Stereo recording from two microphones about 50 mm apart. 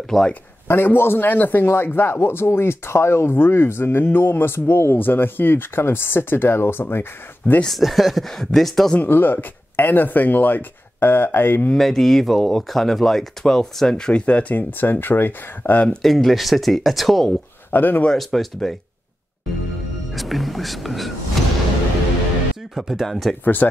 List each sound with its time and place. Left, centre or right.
0.1 s speech: centre
0.7 s a man's voice: left
4.9 s a man's voice: left
7.6 s speech: centre
9.0 s speech: left
11.7 s speech: centre
14.5 s speech: left
16.0 s speech: centre
17.6 s speech: left
18.1 s speech: centre
20.1 s speech: centre
22.8 s speech: centre
23.4 s speech: left